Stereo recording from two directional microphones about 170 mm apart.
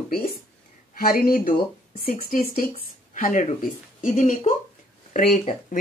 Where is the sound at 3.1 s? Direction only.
50° left (ahead or behind).